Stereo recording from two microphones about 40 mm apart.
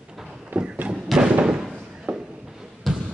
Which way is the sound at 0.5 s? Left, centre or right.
Right.